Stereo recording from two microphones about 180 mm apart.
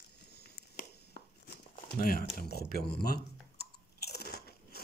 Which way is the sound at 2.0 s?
55° left (ahead or behind).